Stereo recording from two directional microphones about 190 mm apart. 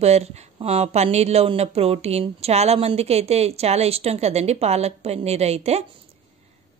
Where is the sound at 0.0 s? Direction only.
35° right (ahead or behind).